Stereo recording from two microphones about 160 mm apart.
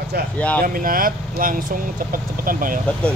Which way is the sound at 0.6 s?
60° right (ahead or behind).